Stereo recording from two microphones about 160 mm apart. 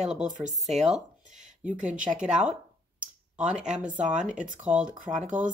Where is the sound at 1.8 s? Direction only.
55° right (ahead or behind).